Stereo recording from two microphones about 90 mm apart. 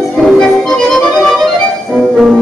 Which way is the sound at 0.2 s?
5° left (ahead or behind).